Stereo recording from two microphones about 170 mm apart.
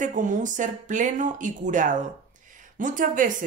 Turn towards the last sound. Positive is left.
turn(degrees=-50)  # may be behind; listen again after turning